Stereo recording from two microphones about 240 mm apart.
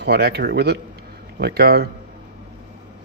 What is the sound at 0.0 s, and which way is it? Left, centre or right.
A man's voice, right.